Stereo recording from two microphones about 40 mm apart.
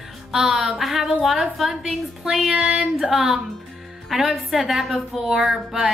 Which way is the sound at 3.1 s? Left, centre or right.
Centre.